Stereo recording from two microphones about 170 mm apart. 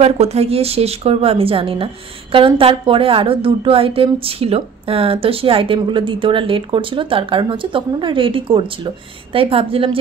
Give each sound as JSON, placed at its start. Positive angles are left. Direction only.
{"t": 0.0, "sound": "a woman's voice", "side_deg": -40}